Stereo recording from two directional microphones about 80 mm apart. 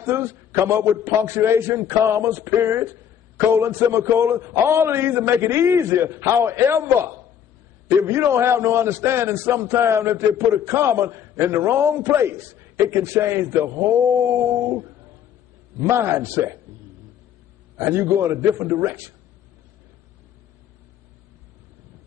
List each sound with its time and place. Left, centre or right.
0.0 s a man's voice: right
15.8 s a man's voice: right
17.7 s a man's voice: right